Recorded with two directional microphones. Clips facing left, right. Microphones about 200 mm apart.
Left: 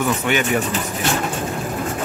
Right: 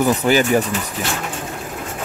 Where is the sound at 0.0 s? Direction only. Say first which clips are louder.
Right 4 dB; 35° right (ahead or behind).